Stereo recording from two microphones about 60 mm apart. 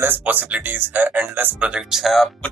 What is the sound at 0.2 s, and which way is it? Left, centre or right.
Speech, right.